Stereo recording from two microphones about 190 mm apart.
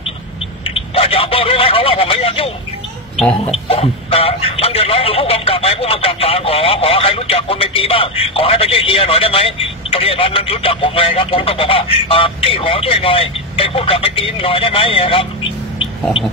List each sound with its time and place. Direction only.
0.7 s speech: 30° left (ahead or behind)
3.2 s speech: 5° left (ahead or behind)
3.5 s speech: 30° left (ahead or behind)
15.8 s a sound: 30° left (ahead or behind)